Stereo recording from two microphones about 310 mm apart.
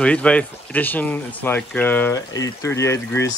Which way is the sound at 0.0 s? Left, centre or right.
Centre.